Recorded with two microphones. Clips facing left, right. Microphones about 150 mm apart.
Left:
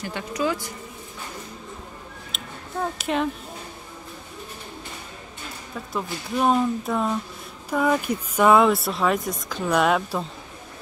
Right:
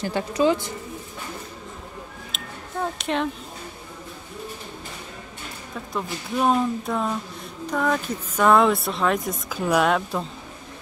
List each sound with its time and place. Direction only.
0.0 s a woman's voice: 30° right (ahead or behind)
2.3 s a sound: centre (ahead or behind)
5.9 s speech: centre (ahead or behind)